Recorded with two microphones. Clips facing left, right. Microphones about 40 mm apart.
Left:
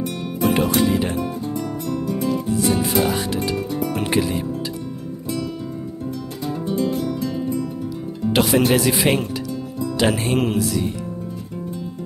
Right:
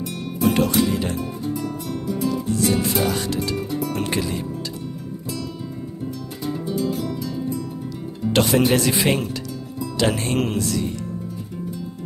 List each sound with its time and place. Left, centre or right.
0.4 s music: centre
3.0 s music: centre
3.5 s music: left
3.9 s music: centre
6.8 s music: centre
8.3 s speech: centre